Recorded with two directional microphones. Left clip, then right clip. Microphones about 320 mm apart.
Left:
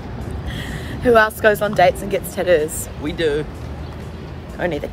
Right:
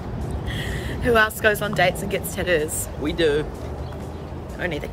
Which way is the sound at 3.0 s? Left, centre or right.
Centre.